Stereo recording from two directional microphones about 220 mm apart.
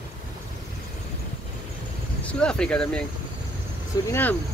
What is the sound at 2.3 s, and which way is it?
Speech, 5° left (ahead or behind).